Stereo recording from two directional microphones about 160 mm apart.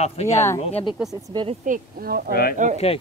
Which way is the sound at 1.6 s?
60° right (ahead or behind).